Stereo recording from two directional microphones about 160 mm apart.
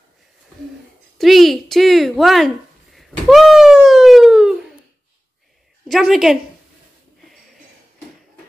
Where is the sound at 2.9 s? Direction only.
Centre (ahead or behind).